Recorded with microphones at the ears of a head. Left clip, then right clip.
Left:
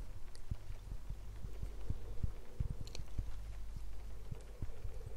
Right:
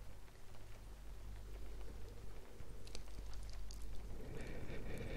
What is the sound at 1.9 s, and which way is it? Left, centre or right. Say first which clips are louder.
Heart sounds: left 4 dB; left.